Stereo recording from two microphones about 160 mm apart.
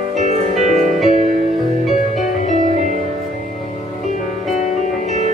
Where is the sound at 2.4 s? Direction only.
50° left (ahead or behind).